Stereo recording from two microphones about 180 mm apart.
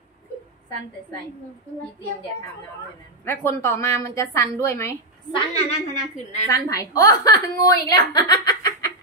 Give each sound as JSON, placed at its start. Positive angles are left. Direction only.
{"t": 3.3, "sound": "a woman's voice", "side_deg": 15}
{"t": 5.3, "sound": "a woman's voice", "side_deg": 35}
{"t": 6.5, "sound": "a woman's voice", "side_deg": 20}